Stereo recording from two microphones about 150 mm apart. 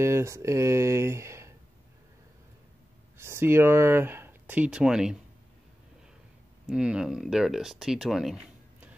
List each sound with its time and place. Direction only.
0.0 s speech: 20° right (ahead or behind)
3.2 s speech: 15° right (ahead or behind)
6.7 s speech: 5° right (ahead or behind)